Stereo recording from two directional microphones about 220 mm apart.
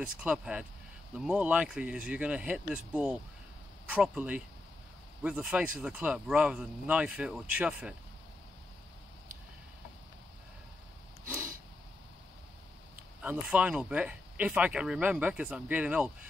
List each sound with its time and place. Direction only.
0.0 s speech: 5° right (ahead or behind)
13.2 s speech: 5° right (ahead or behind)